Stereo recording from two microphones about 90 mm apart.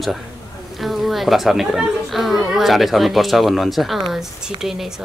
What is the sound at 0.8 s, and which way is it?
A woman's voice, centre (ahead or behind).